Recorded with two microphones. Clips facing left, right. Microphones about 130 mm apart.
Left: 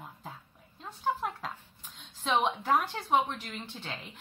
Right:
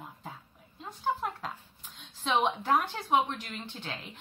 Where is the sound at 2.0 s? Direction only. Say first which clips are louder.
Even; 5° right (ahead or behind).